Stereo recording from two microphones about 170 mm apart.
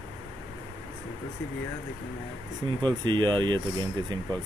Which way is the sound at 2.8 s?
25° right (ahead or behind).